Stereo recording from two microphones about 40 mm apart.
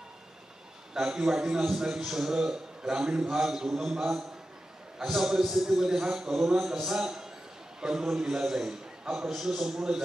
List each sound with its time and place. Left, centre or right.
0.9 s a man's voice: centre